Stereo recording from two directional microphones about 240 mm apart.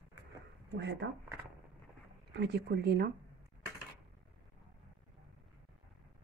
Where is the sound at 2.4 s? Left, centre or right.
Right.